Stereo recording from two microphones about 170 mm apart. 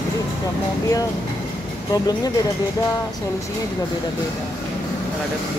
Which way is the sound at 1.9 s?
20° left (ahead or behind).